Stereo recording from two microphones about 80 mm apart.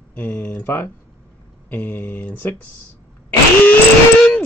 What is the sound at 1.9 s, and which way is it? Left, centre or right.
Speech, left.